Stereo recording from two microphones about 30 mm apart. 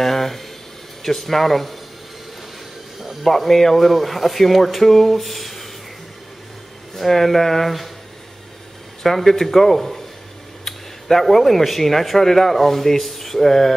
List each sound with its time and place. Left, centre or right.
0.0 s a sound: centre
1.0 s speech: centre
3.3 s speech: centre
7.0 s speech: centre
9.0 s speech: centre